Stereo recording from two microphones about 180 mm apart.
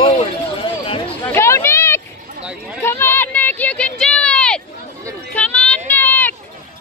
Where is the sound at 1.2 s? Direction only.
15° left (ahead or behind).